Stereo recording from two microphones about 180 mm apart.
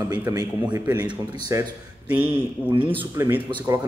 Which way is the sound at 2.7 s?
30° right (ahead or behind).